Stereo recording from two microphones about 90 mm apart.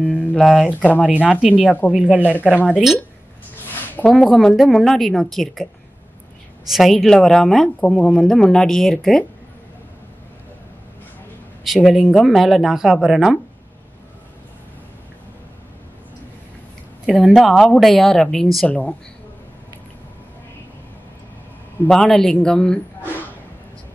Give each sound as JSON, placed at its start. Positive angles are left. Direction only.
{"t": 0.0, "sound": "speech", "side_deg": 10}
{"t": 0.7, "sound": "speech", "side_deg": 20}
{"t": 1.0, "sound": "speech", "side_deg": -15}
{"t": 3.6, "sound": "a sound", "side_deg": 20}
{"t": 4.1, "sound": "speech", "side_deg": 0}
{"t": 6.7, "sound": "speech", "side_deg": 0}
{"t": 7.9, "sound": "speech", "side_deg": 15}
{"t": 11.6, "sound": "speech", "side_deg": 0}
{"t": 17.2, "sound": "speech", "side_deg": 0}
{"t": 18.7, "sound": "speech", "side_deg": 15}
{"t": 21.8, "sound": "speech", "side_deg": 5}